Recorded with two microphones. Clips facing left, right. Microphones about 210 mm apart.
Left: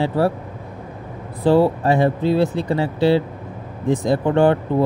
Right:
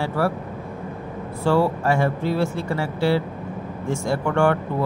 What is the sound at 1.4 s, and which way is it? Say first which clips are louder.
Speech: left 4 dB; 15° left (ahead or behind).